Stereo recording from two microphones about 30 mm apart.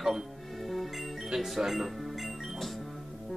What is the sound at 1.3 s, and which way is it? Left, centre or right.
Speech, centre.